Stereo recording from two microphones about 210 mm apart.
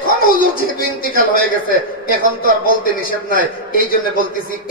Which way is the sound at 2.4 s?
45° left (ahead or behind).